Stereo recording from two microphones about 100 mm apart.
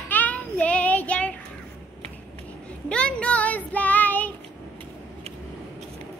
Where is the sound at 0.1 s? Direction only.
15° left (ahead or behind).